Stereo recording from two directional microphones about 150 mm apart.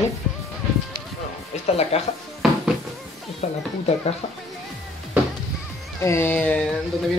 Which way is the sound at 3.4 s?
50° left (ahead or behind).